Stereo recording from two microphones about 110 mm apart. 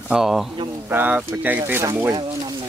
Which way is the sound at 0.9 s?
15° right (ahead or behind).